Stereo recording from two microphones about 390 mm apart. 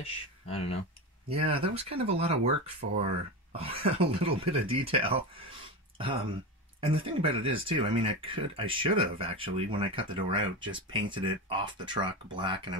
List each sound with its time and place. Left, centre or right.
0.0 s speech: centre
1.3 s speech: centre
6.8 s speech: centre